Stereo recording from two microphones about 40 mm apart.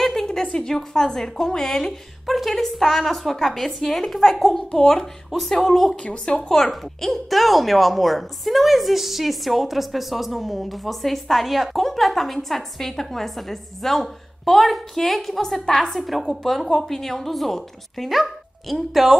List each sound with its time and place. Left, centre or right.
0.0 s a sound: centre
0.6 s a woman's voice: centre
4.2 s a woman's voice: centre
4.7 s a woman's voice: centre
5.9 s a woman's voice: left
7.0 s a woman's voice: centre